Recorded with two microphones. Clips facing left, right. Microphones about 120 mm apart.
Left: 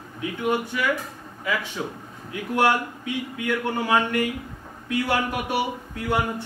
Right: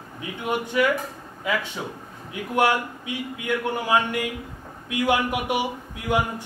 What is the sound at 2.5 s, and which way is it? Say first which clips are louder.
Speech: even; 15° right (ahead or behind).